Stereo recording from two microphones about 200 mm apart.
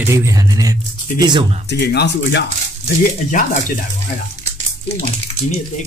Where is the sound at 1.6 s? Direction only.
55° left (ahead or behind).